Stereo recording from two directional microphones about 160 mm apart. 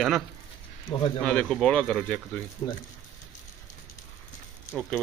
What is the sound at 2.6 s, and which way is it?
Speech, 25° left (ahead or behind).